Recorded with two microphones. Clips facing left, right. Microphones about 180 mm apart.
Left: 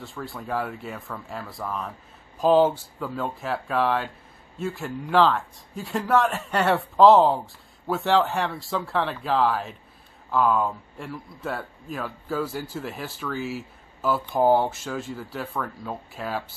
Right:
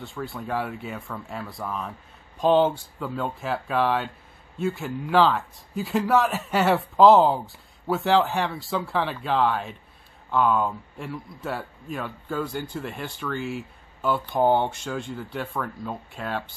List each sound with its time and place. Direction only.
0.0 s a man's voice: centre (ahead or behind)